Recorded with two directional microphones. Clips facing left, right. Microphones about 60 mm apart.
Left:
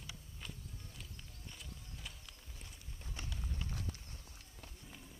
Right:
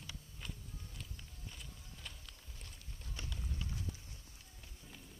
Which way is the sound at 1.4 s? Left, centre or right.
Centre.